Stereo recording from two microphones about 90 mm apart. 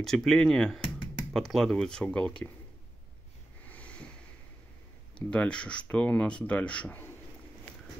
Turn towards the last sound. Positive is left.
turn(degrees=15)  # may be behind; listen again after turning